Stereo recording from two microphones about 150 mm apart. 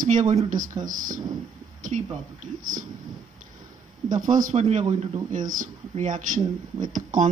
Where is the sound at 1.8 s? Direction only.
55° right (ahead or behind).